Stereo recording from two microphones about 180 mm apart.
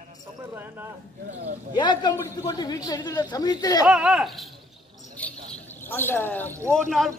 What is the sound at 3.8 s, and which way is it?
Speech, 5° right (ahead or behind).